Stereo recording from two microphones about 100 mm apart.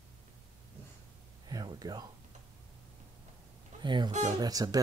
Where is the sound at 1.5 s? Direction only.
40° right (ahead or behind).